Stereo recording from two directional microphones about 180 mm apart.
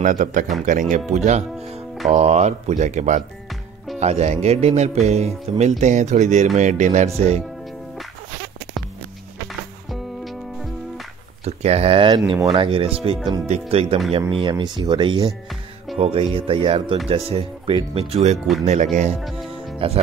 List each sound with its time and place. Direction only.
0.0 s speech: 45° right (ahead or behind)
9.8 s music: centre (ahead or behind)
11.4 s speech: 35° right (ahead or behind)
19.8 s speech: 30° right (ahead or behind)